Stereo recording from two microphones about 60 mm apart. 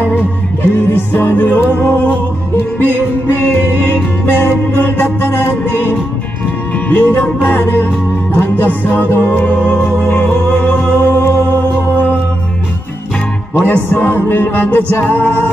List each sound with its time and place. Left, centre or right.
0.6 s music: left
3.3 s music: left
13.7 s music: left